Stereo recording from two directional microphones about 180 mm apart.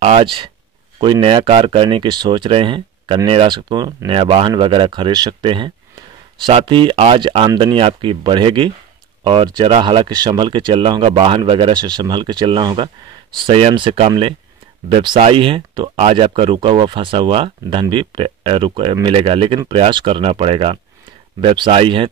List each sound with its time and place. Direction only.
0.0 s speech: 30° right (ahead or behind)